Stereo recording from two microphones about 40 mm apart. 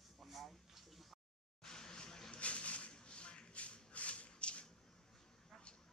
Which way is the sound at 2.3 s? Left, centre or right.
Left.